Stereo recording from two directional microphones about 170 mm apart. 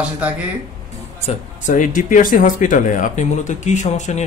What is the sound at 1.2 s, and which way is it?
Speech, 50° left (ahead or behind).